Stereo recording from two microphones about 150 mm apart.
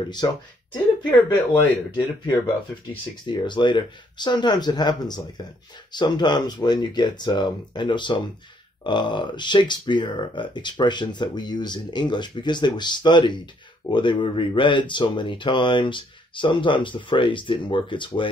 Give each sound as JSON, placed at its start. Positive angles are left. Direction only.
{"t": 0.2, "sound": "speech", "side_deg": 25}
{"t": 1.5, "sound": "speech", "side_deg": 30}